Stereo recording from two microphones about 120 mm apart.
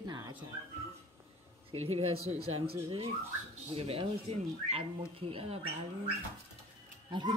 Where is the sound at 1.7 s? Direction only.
60° right (ahead or behind).